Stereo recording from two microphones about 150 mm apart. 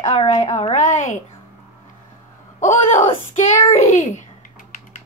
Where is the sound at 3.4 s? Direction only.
50° left (ahead or behind).